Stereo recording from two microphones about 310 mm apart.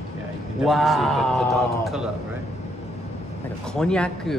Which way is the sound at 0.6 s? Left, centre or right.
Centre.